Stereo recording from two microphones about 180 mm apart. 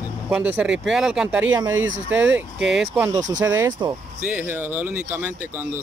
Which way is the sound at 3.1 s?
20° right (ahead or behind).